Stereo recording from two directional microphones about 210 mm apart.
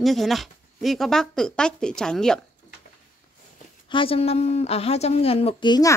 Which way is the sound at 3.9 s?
25° left (ahead or behind).